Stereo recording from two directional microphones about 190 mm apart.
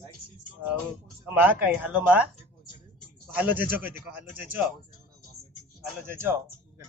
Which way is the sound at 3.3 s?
10° right (ahead or behind).